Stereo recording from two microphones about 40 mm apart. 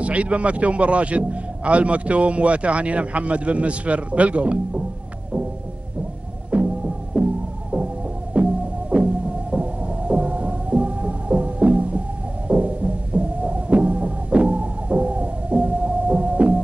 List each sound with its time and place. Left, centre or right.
0.0 s a man's voice: right
6.5 s throbbing: right
7.2 s music: right
7.7 s throbbing: right
12.4 s music: right